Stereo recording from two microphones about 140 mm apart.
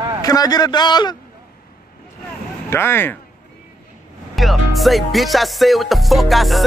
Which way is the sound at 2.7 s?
15° left (ahead or behind).